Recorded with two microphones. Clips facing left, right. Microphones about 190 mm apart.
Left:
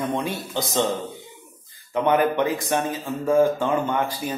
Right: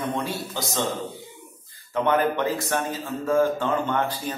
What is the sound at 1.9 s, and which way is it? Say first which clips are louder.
A man's voice: left 2 dB; 15° left (ahead or behind).